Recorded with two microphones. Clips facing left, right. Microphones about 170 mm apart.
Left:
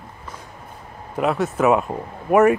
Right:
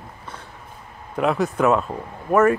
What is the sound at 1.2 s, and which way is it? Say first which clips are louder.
Speech: even; centre (ahead or behind).